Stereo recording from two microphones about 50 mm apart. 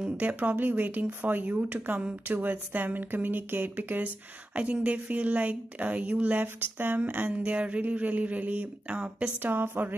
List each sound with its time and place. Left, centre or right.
0.2 s speech: right
2.0 s speech: right
2.3 s speech: right
6.4 s speech: right
7.2 s speech: right
9.4 s speech: right